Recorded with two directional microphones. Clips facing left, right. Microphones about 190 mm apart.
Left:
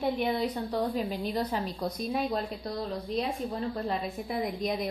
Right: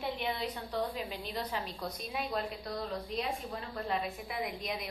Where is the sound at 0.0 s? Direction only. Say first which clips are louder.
Left 7 dB; 45° left (ahead or behind).